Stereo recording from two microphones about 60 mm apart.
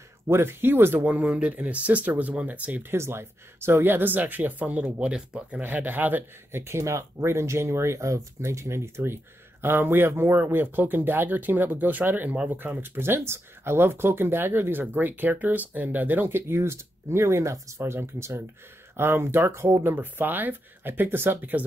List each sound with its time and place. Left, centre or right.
0.3 s speech: right
1.0 s speech: right
2.9 s speech: right
5.0 s speech: centre
5.6 s speech: right
6.5 s speech: right
17.9 s speech: right